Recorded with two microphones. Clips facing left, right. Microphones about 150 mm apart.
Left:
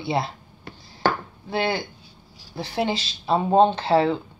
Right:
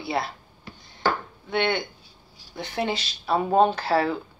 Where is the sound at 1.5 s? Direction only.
30° left (ahead or behind).